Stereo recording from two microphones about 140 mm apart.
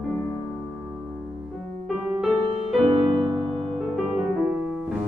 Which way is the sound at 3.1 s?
40° right (ahead or behind).